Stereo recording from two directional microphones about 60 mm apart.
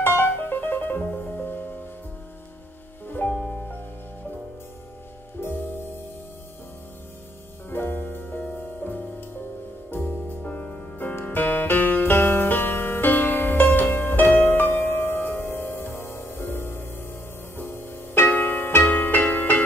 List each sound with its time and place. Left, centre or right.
0.0 s music: left
3.3 s music: centre
5.4 s music: left
7.7 s music: left
9.8 s music: left